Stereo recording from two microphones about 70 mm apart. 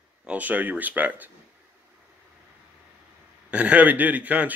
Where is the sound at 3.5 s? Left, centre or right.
Centre.